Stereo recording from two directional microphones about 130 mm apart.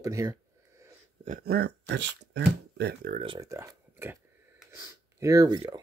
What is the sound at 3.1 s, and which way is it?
Speech, 90° right.